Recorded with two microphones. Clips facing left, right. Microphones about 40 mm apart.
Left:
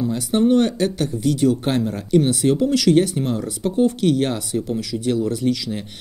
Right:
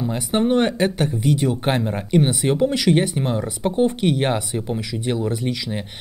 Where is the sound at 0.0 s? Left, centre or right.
Right.